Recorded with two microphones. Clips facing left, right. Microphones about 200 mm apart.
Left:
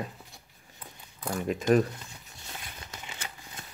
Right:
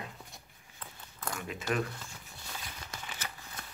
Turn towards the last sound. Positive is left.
turn(degrees=25)  # may be behind; listen again after turning